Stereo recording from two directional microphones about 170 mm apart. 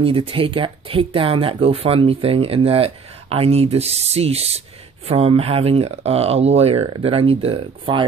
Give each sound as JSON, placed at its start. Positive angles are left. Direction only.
{"t": 0.0, "sound": "speech", "side_deg": -30}